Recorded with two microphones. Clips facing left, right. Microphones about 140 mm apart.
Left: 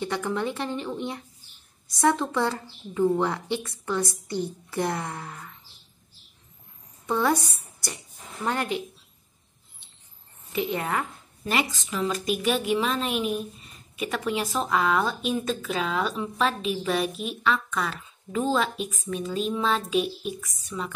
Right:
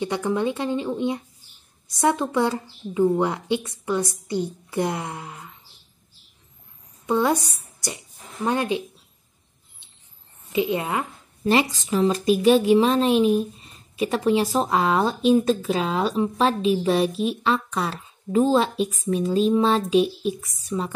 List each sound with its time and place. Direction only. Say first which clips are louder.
0.0 s a woman's voice: right 4 dB; 15° right (ahead or behind)
7.1 s a woman's voice: right 3 dB; 15° right (ahead or behind)
8.5 s a woman's voice: right 4 dB; 20° right (ahead or behind)
10.5 s a woman's voice: right 4 dB; 15° right (ahead or behind)
11.4 s a woman's voice: right 7 dB; 30° right (ahead or behind)